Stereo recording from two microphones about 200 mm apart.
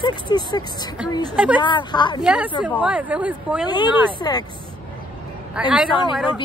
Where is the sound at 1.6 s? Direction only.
25° left (ahead or behind).